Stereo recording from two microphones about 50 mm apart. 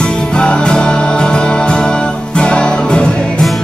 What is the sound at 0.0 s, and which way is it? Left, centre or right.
Music, centre.